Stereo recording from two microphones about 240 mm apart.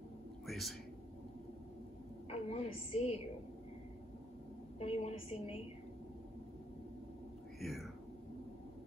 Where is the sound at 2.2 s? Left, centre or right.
Left.